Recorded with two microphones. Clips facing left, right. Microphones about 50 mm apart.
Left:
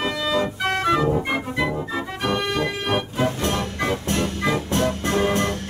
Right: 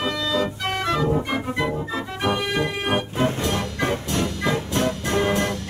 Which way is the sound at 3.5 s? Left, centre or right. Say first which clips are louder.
Even; right.